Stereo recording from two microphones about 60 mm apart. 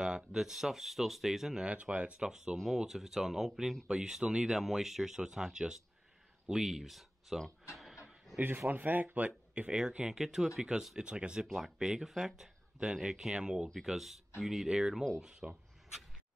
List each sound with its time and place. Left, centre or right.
0.0 s speech: centre
1.7 s speech: right; by 7.4 s centre
7.7 s a sound: centre
8.6 s speech: right
10.0 s speech: centre
13.8 s speech: centre